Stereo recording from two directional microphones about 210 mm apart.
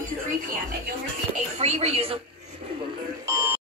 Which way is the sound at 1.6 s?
30° right (ahead or behind).